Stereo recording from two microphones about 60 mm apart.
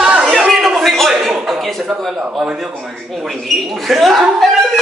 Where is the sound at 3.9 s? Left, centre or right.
Centre.